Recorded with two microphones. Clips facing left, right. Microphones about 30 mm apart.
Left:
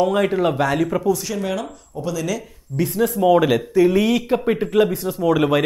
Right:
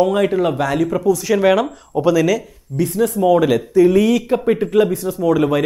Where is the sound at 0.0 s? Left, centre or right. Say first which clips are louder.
Right 2 dB; centre.